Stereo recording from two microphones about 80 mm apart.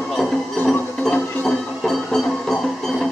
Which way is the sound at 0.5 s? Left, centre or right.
Left.